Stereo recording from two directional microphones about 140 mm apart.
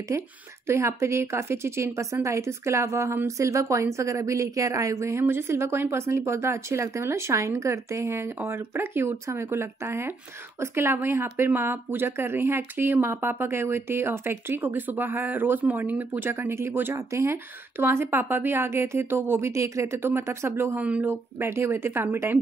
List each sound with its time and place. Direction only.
0.1 s a woman's voice: 20° right (ahead or behind)